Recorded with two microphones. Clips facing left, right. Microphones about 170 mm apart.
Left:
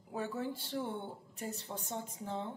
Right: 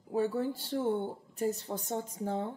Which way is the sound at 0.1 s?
35° right (ahead or behind).